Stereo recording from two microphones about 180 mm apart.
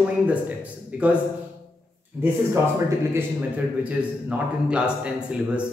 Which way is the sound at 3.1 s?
10° right (ahead or behind).